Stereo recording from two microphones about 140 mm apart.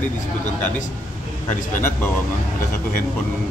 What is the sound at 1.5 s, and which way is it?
Speech, 15° left (ahead or behind).